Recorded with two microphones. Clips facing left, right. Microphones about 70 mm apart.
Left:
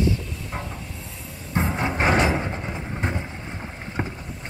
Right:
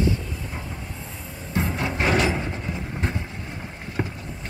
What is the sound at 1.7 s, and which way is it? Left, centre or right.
Music, left.